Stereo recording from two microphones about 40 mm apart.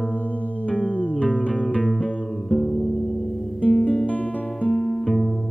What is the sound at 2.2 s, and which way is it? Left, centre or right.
Music, centre.